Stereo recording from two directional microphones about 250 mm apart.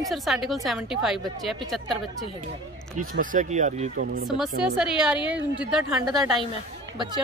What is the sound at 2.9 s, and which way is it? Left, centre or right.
Speech, right.